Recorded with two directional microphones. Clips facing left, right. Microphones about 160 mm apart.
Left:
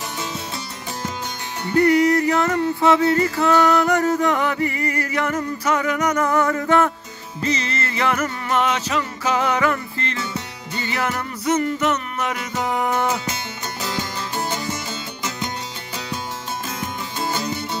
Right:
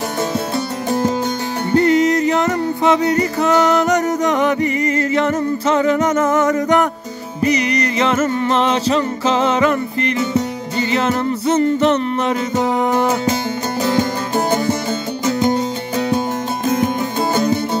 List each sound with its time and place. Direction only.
1.7 s music: 25° right (ahead or behind)
13.8 s music: 50° right (ahead or behind)
16.6 s music: 55° right (ahead or behind)